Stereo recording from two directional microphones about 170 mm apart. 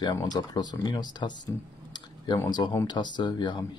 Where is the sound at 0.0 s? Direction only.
25° left (ahead or behind).